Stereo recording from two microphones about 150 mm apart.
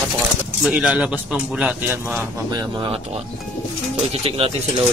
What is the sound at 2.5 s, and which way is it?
Speech, 30° right (ahead or behind).